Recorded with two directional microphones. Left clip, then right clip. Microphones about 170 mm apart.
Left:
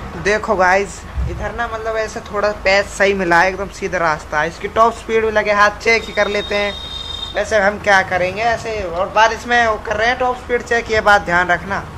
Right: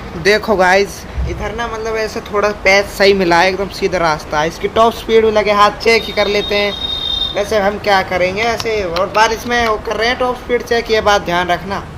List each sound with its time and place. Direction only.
0.3 s speech: 25° right (ahead or behind); by 3.5 s 45° right (ahead or behind)
3.9 s speech: 30° right (ahead or behind)